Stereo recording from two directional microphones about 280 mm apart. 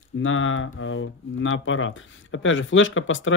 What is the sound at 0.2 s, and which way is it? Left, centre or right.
Speech, left.